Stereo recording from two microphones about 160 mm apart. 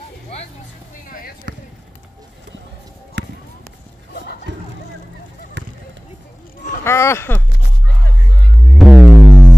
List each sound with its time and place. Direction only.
1.5 s basketball bounce: 80° right
3.2 s run: 90° right
4.5 s music: 90° right
6.8 s speech: 15° left (ahead or behind)
8.7 s music: centre (ahead or behind)